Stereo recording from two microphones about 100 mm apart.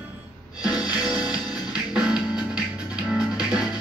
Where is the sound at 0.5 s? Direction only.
10° right (ahead or behind).